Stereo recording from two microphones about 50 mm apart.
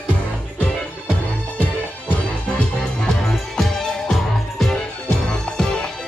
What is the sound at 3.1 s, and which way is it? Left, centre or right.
Music, centre.